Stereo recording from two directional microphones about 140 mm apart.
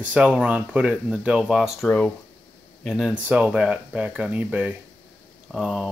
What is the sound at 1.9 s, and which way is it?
Speech, 10° left (ahead or behind).